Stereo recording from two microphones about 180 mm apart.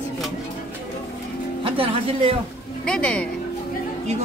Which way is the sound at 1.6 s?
30° right (ahead or behind).